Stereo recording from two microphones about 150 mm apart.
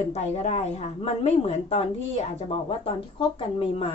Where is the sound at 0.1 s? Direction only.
45° left (ahead or behind).